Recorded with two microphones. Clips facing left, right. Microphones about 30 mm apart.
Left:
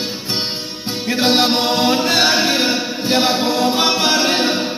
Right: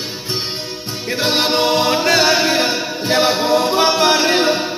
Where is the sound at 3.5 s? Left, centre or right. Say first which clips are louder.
Right 2 dB; right.